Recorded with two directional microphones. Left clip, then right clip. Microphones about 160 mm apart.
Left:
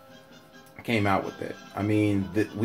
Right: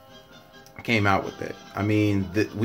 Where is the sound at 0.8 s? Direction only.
20° right (ahead or behind).